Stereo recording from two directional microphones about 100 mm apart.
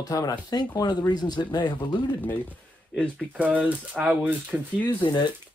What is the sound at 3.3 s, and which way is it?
Speech, 15° right (ahead or behind).